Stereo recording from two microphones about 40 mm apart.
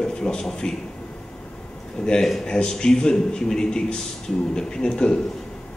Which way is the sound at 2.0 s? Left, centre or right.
Centre.